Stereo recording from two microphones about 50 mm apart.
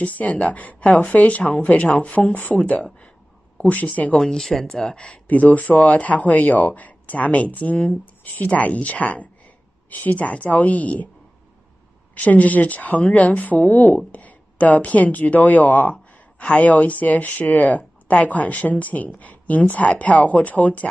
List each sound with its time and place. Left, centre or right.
0.0 s speech: left
4.2 s speech: centre
4.9 s speech: left
12.2 s speech: left